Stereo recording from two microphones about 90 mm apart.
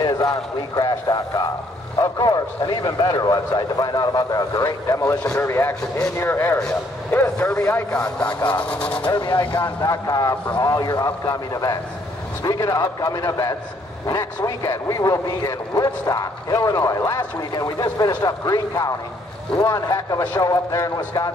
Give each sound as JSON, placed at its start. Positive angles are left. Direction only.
{"t": 0.7, "sound": "a man's voice", "side_deg": 45}
{"t": 5.3, "sound": "a man's voice", "side_deg": 30}
{"t": 9.1, "sound": "speech", "side_deg": 55}
{"t": 9.8, "sound": "a man's voice", "side_deg": 40}